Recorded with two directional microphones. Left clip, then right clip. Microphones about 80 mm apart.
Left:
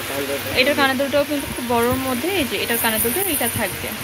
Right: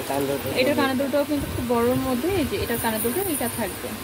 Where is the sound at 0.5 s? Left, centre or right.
Centre.